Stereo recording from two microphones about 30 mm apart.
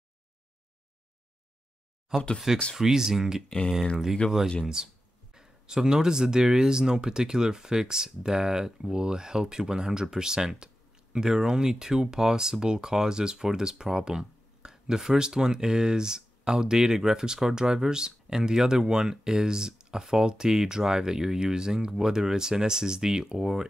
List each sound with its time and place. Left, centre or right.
2.1 s speech: centre
3.4 s speech: left
4.8 s speech: right